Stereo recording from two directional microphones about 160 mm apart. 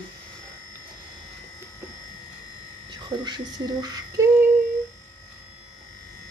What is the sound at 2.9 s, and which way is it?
Speech, 25° right (ahead or behind).